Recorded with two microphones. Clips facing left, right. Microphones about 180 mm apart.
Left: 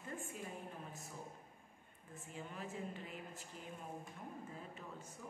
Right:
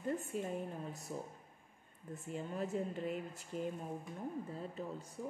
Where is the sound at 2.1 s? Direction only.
40° right (ahead or behind).